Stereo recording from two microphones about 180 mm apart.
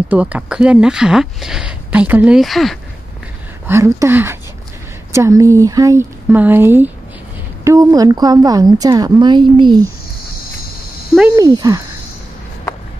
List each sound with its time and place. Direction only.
0.1 s speech: 5° right (ahead or behind)
3.6 s a woman's voice: 15° right (ahead or behind)
11.3 s a woman's voice: 20° right (ahead or behind)